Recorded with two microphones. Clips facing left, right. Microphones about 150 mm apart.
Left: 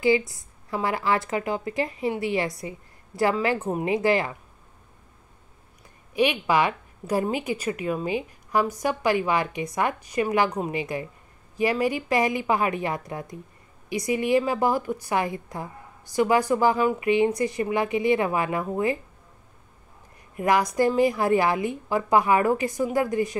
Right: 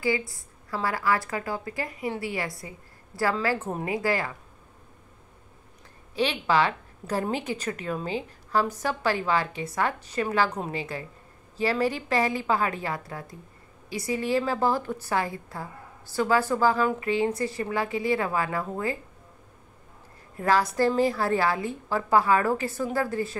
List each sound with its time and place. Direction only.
0.3 s a woman's voice: 20° left (ahead or behind)
6.1 s a woman's voice: 15° left (ahead or behind)
20.3 s a woman's voice: 15° left (ahead or behind)